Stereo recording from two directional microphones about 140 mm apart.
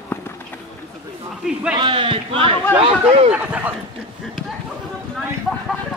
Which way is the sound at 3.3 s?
10° right (ahead or behind).